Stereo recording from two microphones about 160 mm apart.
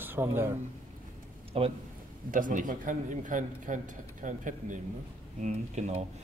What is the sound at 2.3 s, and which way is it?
A man's voice, 55° right (ahead or behind).